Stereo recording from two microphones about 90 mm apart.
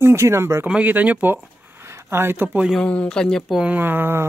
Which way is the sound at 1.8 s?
30° right (ahead or behind).